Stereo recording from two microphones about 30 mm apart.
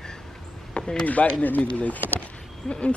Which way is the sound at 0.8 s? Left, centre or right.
Left.